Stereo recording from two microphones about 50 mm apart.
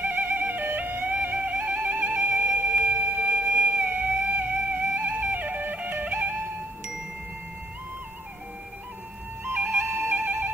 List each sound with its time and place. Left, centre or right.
0.0 s music: right
9.4 s music: right